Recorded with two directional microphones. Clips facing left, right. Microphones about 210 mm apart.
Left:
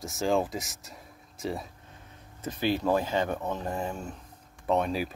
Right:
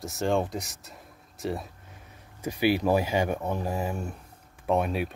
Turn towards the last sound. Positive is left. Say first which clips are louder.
# right 1 dB
turn(degrees=-5)  # may be behind; listen again after turning